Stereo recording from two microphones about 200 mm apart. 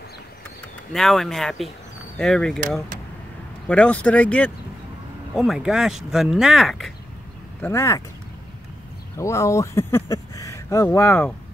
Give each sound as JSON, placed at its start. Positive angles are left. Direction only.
{"t": 0.9, "sound": "speech", "side_deg": 0}
{"t": 3.6, "sound": "speech", "side_deg": 5}
{"t": 7.6, "sound": "speech", "side_deg": 15}
{"t": 9.1, "sound": "speech", "side_deg": 15}